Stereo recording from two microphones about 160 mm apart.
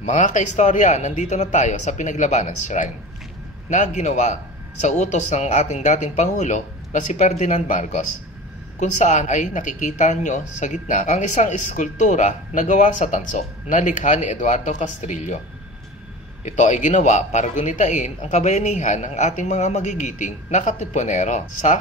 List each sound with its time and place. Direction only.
0.0 s speech: 50° left (ahead or behind)
16.4 s speech: 45° left (ahead or behind)